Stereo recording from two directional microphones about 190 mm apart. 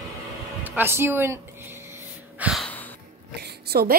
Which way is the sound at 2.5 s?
5° left (ahead or behind).